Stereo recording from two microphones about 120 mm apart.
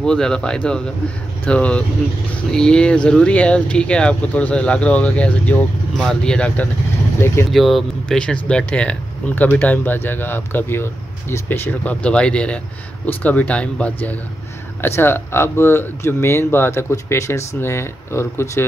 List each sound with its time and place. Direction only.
0.0 s speech: 5° left (ahead or behind)
7.5 s speech: centre (ahead or behind); by 18.7 s 25° left (ahead or behind)